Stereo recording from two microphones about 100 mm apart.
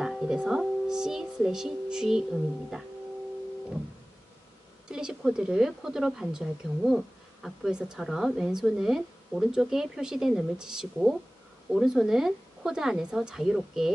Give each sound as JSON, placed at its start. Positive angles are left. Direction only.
{"t": 0.0, "sound": "speech", "side_deg": -5}
{"t": 4.9, "sound": "speech", "side_deg": -5}